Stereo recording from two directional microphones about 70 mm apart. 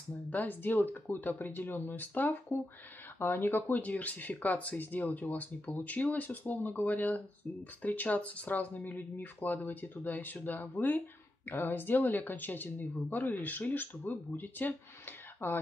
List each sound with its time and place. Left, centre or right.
0.3 s speech: left